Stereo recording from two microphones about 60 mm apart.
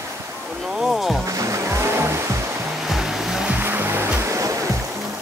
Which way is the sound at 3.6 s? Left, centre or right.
Right.